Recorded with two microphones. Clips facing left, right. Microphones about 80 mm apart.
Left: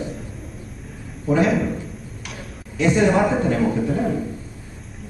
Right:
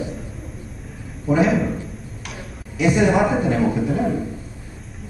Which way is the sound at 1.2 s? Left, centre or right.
Centre.